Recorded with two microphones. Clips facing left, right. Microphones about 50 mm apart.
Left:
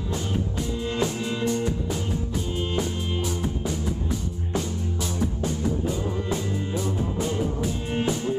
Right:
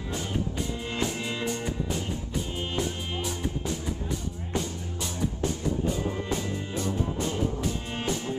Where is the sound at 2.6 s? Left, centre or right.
Centre.